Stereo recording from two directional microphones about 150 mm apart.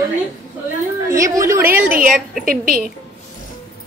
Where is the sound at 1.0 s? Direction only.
20° right (ahead or behind).